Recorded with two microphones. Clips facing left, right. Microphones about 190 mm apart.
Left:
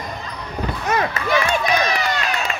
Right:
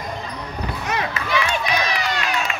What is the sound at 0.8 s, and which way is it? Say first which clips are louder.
Run: left 5 dB; 45° left (ahead or behind).